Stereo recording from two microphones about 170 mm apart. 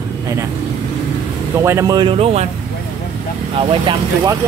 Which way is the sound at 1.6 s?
20° right (ahead or behind).